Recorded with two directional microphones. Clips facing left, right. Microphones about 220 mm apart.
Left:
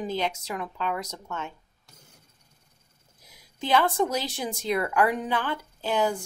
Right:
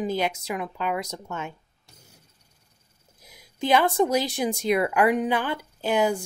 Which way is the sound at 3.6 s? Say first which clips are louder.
Right 3 dB; 15° right (ahead or behind).